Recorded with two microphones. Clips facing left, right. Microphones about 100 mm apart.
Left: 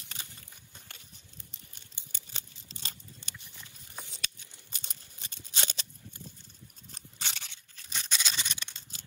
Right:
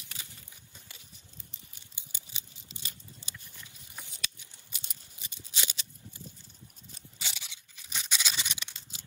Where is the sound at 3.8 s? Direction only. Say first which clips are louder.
Left 1 dB; 60° left (ahead or behind).